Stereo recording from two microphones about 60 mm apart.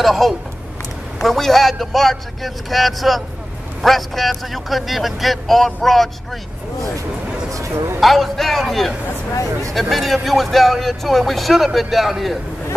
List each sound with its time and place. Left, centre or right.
0.0 s speech: centre
7.5 s speech: right
8.0 s speech: centre